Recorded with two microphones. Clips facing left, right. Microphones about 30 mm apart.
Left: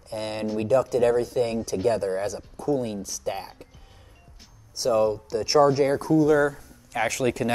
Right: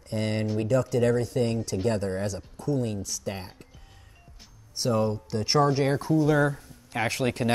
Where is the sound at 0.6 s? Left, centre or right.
Centre.